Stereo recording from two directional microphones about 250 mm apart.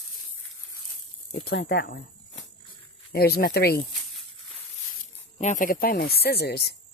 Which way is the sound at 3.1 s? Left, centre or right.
Left.